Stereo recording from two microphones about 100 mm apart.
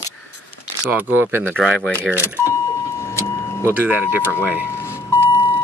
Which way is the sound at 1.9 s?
25° left (ahead or behind).